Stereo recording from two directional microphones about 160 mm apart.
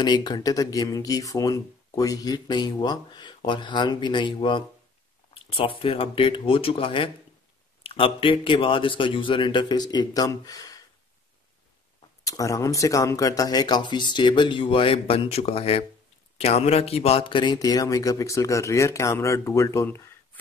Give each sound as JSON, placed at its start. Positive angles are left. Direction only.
{"t": 0.0, "sound": "speech", "side_deg": 25}
{"t": 12.3, "sound": "speech", "side_deg": 20}